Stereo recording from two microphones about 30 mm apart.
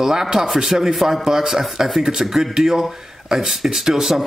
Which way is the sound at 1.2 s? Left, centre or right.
Centre.